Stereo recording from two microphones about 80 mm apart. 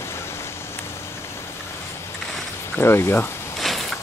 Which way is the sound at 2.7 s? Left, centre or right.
Left.